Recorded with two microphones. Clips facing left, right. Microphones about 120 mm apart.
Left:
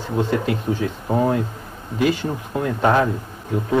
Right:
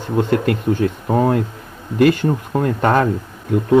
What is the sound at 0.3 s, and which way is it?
A man's voice, 60° right (ahead or behind).